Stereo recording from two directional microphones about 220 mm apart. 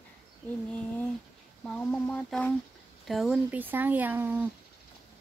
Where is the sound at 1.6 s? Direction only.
5° left (ahead or behind).